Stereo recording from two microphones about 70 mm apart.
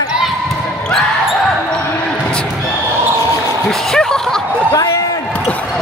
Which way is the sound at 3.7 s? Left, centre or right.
Centre.